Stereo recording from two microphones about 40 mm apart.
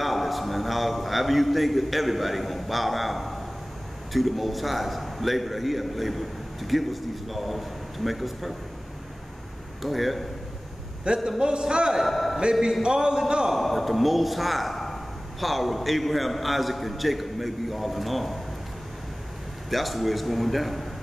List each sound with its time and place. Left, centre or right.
0.0 s a man's voice: centre
9.8 s a man's voice: centre
11.2 s a man's voice: right
12.0 s a man's voice: centre
12.8 s a man's voice: centre
13.6 s a man's voice: centre
19.7 s a man's voice: centre